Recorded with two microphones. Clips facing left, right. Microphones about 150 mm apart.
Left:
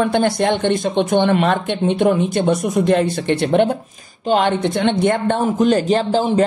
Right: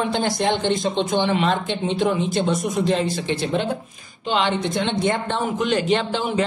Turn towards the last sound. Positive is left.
turn(degrees=40)  # may be behind; listen again after turning